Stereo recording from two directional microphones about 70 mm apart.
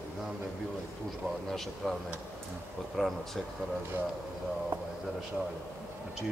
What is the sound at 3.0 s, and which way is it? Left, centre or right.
Speech, centre.